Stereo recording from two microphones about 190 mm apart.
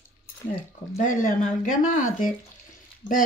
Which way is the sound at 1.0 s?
45° left (ahead or behind).